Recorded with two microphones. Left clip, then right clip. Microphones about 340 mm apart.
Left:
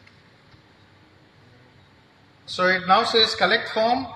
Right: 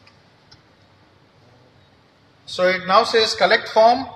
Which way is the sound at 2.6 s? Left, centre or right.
Right.